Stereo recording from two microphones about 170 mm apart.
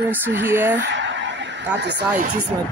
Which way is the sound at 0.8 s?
90° right.